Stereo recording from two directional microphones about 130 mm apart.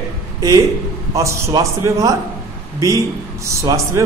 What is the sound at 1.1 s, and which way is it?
A man's voice, 20° right (ahead or behind).